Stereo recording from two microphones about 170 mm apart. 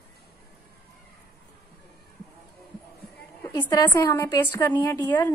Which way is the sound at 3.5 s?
10° left (ahead or behind).